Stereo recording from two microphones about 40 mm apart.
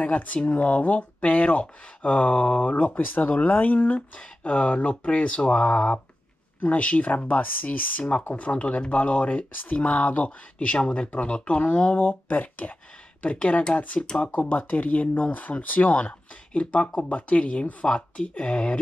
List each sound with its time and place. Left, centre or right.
0.0 s speech: left
3.0 s speech: left
6.6 s speech: left
12.0 s speech: left
13.2 s speech: left
13.9 s speech: left
14.2 s speech: left
16.0 s speech: left
17.8 s speech: left